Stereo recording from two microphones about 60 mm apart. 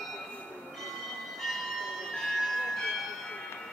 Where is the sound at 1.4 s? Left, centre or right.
Centre.